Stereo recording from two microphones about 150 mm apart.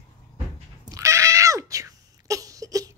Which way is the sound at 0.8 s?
20° right (ahead or behind).